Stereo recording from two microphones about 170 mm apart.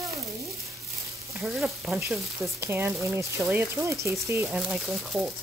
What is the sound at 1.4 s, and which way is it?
Speech, centre (ahead or behind).